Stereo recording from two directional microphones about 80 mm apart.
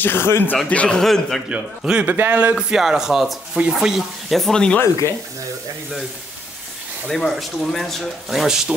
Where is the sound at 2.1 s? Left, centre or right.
Right.